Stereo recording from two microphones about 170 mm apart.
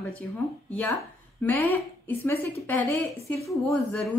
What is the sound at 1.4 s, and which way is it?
A woman's voice, 10° left (ahead or behind).